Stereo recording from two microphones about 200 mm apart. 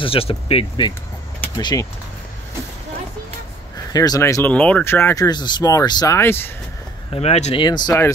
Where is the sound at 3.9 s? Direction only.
20° left (ahead or behind).